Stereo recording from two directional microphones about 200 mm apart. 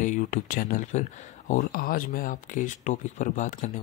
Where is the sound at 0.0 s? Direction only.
40° left (ahead or behind).